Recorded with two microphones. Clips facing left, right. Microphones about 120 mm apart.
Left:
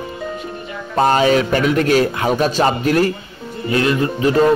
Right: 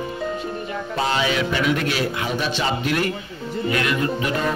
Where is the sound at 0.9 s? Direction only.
45° left (ahead or behind).